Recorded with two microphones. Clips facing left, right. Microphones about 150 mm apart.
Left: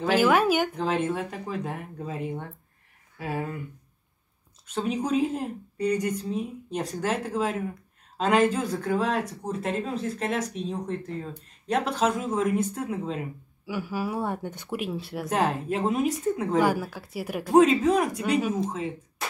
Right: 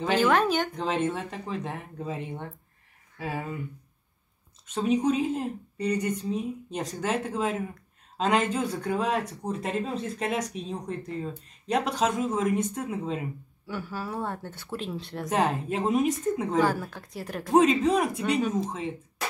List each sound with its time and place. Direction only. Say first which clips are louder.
0.0 s a woman's voice: left 2 dB; 5° left (ahead or behind)
4.8 s a woman's voice: right 2 dB; centre (ahead or behind)